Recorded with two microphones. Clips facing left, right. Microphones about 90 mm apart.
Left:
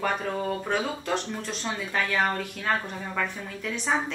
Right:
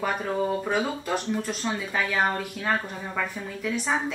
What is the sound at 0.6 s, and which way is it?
Speech, 5° right (ahead or behind).